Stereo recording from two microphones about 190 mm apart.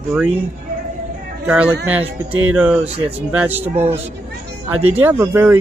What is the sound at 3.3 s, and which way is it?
Speech, 10° right (ahead or behind).